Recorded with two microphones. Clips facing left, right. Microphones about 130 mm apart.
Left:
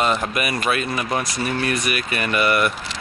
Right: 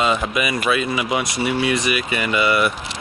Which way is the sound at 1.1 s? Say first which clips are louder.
Right 2 dB; 20° right (ahead or behind).